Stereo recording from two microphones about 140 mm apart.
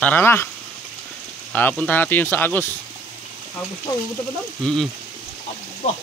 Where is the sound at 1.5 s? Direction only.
10° left (ahead or behind).